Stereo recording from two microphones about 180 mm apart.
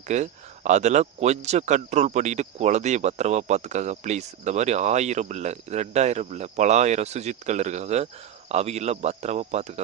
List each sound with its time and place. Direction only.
0.1 s speech: 40° right (ahead or behind)